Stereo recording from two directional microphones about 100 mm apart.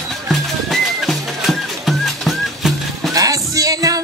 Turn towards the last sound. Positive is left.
turn(degrees=-35)  # may be behind; listen again after turning